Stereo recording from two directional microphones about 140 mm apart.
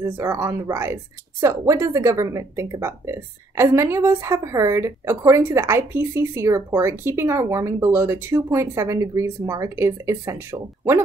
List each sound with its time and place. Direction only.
0.0 s a woman's voice: 20° right (ahead or behind)